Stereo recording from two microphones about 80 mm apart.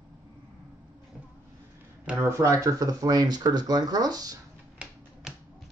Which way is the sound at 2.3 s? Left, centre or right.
Right.